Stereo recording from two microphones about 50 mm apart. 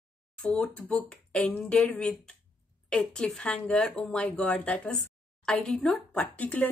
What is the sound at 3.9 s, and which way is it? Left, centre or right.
Speech, left.